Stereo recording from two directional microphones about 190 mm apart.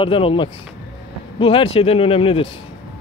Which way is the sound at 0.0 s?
30° left (ahead or behind).